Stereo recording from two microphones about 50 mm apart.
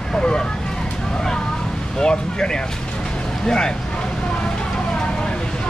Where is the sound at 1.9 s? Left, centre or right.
Centre.